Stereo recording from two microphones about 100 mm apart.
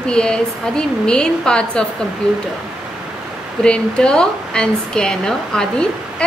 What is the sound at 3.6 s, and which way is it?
Speech, 10° left (ahead or behind).